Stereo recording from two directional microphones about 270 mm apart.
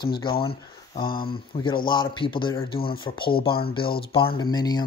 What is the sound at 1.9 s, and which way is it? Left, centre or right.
Speech, centre.